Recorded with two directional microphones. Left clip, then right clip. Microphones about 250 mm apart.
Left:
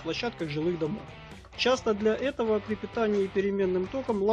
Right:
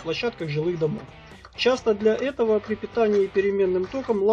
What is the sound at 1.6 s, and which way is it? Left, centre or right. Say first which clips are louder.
Speech: right 4 dB; centre.